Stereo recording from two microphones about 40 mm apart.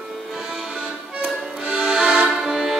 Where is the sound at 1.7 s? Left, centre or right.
Right.